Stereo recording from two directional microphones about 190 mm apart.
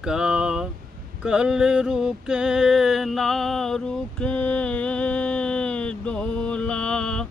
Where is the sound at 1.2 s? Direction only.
5° right (ahead or behind).